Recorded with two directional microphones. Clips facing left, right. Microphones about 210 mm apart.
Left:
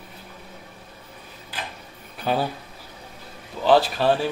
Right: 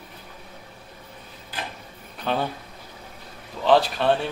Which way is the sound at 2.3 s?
5° left (ahead or behind).